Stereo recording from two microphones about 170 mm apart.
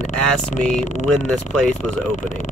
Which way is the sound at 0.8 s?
45° left (ahead or behind).